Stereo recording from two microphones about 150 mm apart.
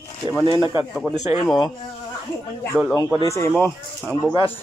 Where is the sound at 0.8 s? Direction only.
Centre (ahead or behind).